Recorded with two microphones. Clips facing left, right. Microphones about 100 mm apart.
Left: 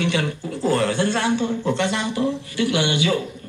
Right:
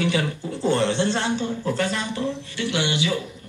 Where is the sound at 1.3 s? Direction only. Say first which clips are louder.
Left 4 dB; 20° left (ahead or behind).